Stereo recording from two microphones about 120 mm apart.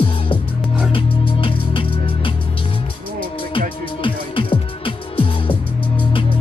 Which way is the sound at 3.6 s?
45° left (ahead or behind).